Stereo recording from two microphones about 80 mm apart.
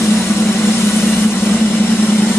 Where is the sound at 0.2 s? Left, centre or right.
Left.